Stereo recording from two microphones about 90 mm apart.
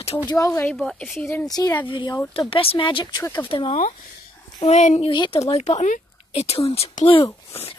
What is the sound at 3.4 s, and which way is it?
Speech, 80° left.